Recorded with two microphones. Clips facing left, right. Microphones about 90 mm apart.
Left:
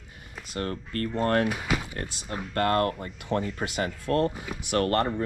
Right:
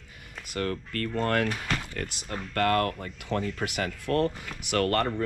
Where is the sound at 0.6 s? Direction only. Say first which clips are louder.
Even; 25° left (ahead or behind).